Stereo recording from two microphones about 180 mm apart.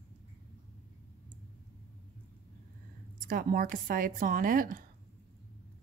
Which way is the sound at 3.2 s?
50° right (ahead or behind).